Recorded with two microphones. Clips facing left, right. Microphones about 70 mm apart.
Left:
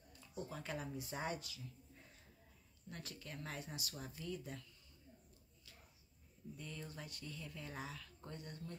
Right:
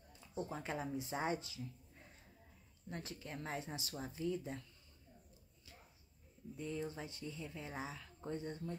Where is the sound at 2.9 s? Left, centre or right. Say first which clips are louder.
Right 4 dB; right.